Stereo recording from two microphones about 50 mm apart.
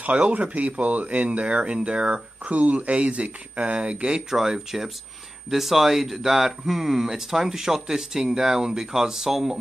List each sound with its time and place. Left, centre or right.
0.3 s speech: right
4.4 s speech: centre